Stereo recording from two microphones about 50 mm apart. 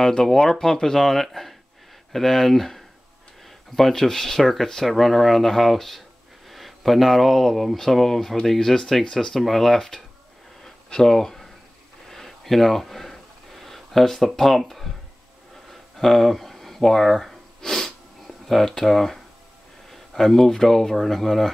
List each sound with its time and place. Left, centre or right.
0.0 s speech: centre
10.6 s a sound: centre
18.2 s speech: centre